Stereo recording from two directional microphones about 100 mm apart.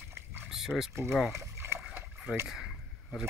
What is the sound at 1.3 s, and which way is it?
Rowboat, 25° right (ahead or behind).